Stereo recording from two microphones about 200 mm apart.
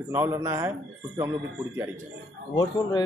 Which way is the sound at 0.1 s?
10° right (ahead or behind).